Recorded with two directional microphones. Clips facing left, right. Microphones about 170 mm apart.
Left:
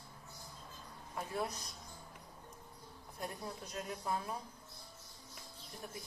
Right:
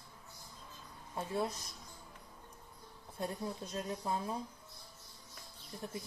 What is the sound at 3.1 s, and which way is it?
Speech, 25° right (ahead or behind).